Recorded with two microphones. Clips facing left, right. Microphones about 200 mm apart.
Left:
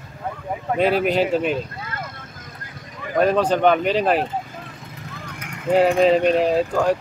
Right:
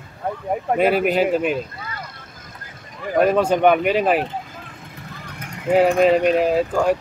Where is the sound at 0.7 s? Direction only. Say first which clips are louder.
Right 1 dB; 5° right (ahead or behind).